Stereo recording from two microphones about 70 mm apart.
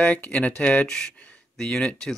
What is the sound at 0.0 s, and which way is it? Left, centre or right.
Speech, centre.